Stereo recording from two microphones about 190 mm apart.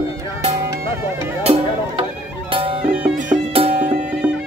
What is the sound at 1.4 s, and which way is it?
Music, 30° right (ahead or behind).